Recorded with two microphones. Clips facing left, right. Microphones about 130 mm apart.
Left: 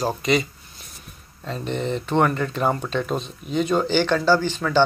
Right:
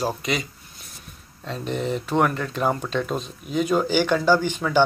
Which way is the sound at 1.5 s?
Centre (ahead or behind).